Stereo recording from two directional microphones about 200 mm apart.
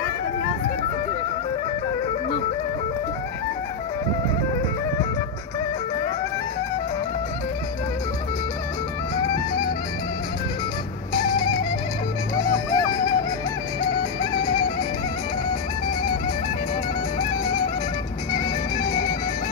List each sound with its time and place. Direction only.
12.4 s music: 20° left (ahead or behind)
14.3 s music: 20° left (ahead or behind)
18.3 s music: 20° left (ahead or behind)